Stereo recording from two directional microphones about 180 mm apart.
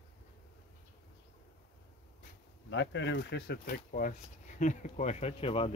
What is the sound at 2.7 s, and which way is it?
Speech, 90° left.